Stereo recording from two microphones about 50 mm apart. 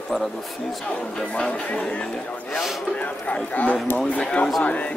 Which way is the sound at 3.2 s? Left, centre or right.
Left.